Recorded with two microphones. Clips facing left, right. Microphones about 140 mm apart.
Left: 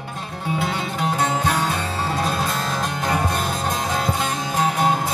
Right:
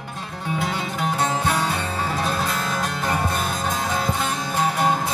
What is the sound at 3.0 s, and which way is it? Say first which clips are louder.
Music: left 2 dB; centre (ahead or behind).